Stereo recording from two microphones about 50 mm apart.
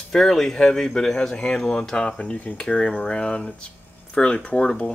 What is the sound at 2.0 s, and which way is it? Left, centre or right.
Speech, centre.